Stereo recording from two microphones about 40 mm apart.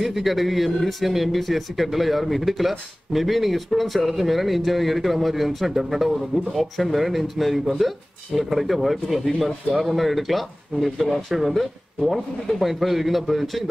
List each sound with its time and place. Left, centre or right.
0.0 s speech: centre